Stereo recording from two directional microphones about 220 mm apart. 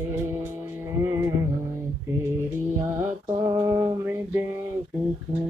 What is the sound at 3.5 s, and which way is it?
Mantra, 15° right (ahead or behind).